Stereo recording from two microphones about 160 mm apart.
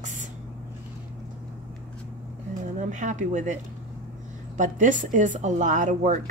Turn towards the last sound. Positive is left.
turn(degrees=-50)  # may be behind; listen again after turning